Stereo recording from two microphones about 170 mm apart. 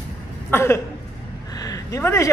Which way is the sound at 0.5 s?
15° left (ahead or behind).